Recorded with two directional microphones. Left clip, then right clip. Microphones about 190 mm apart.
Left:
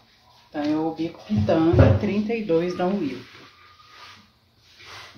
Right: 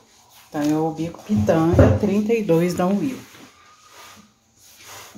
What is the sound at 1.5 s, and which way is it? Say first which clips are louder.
Speech: right 2 dB; 45° right (ahead or behind).